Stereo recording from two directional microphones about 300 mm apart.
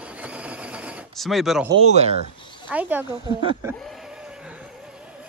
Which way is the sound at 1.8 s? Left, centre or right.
Right.